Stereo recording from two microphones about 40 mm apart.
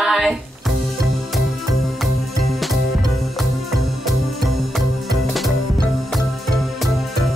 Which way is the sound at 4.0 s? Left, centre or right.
Centre.